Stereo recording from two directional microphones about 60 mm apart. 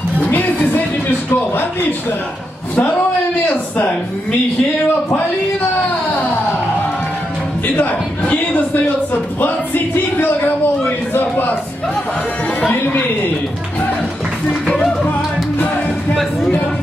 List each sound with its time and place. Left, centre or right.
0.3 s music: left
1.3 s a sound: left
3.4 s a man's voice: left
7.6 s music: left
10.1 s a sound: left
11.1 s music: left
12.7 s a woman's voice: left